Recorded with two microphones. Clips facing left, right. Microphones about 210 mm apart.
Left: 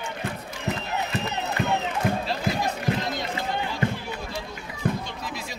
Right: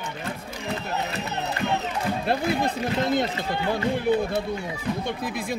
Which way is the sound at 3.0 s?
55° right (ahead or behind).